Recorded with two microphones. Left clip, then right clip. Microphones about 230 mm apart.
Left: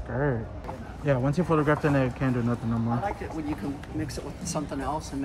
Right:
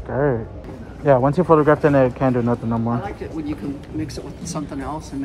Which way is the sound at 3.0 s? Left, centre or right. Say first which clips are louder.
Right 3 dB; centre.